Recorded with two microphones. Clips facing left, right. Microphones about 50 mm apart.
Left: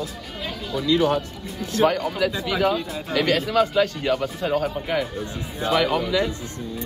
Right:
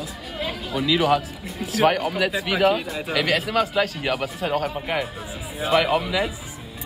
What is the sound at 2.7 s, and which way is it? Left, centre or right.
Speech, right.